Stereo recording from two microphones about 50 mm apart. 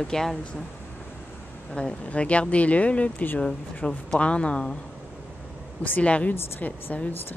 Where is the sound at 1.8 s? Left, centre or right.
Left.